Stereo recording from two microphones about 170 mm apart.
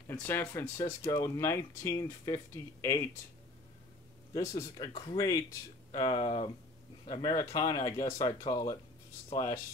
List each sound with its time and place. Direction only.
0.1 s speech: 15° left (ahead or behind)
4.3 s speech: 20° left (ahead or behind)
9.3 s speech: 35° left (ahead or behind)